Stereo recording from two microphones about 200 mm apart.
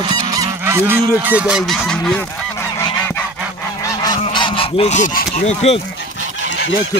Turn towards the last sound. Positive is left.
turn(degrees=35)  # may be behind; listen again after turning